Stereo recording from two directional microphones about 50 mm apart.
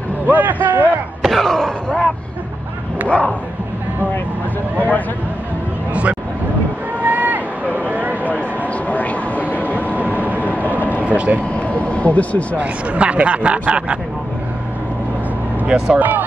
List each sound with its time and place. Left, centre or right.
0.3 s a man's voice: right
1.2 s speech: centre
3.1 s speech: left
7.0 s run: right
7.9 s a sound: right
8.8 s vehicle: left
9.8 s vehicle: right
11.1 s speech: right
11.8 s speech: left
12.5 s speech: right
15.6 s speech: right
16.0 s a man's voice: right